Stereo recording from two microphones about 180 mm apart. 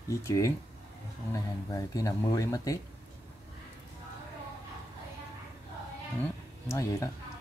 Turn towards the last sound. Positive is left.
turn(degrees=15)  # may be behind; listen again after turning